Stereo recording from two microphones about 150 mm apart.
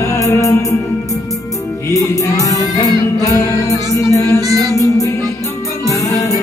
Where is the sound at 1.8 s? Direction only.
20° left (ahead or behind).